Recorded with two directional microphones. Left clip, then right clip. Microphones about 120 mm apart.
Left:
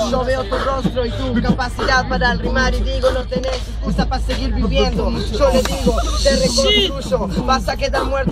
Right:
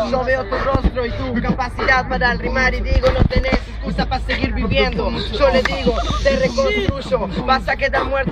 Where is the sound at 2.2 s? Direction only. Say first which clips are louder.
Even; 10° right (ahead or behind).